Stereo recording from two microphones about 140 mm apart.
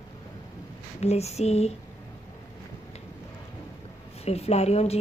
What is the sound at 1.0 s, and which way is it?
Speech, 50° left (ahead or behind).